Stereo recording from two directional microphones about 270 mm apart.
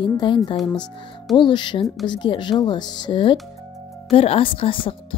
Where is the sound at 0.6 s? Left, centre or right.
Centre.